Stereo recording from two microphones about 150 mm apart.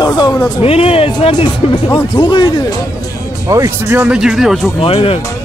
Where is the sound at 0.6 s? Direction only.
40° left (ahead or behind).